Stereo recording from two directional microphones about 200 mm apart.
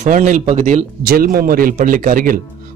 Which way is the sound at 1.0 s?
50° right (ahead or behind).